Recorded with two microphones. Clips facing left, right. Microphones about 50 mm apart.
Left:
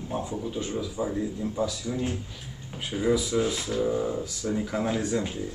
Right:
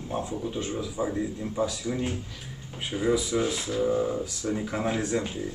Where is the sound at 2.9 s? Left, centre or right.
Centre.